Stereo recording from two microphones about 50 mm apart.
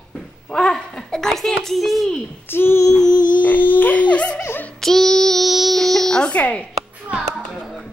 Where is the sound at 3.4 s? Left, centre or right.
Left.